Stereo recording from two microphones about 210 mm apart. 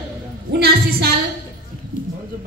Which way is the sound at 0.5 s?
50° right (ahead or behind).